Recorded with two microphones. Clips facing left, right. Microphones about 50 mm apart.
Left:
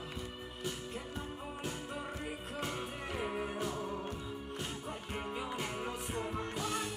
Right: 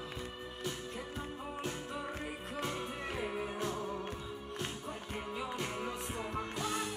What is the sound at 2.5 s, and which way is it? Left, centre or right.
Music, centre.